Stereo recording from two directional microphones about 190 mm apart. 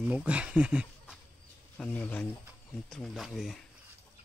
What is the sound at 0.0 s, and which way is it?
Speech, 5° right (ahead or behind).